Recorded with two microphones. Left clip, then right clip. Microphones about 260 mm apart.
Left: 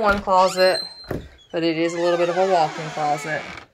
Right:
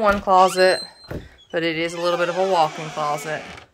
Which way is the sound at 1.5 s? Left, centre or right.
Centre.